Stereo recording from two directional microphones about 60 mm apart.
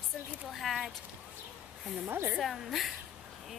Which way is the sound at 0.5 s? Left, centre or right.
Centre.